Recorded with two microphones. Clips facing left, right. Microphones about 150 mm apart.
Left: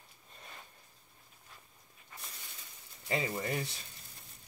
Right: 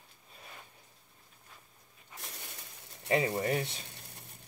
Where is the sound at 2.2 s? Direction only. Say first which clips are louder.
Right 4 dB; 75° right (ahead or behind).